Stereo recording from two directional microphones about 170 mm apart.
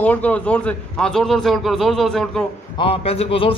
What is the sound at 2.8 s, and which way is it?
Speech, 35° left (ahead or behind).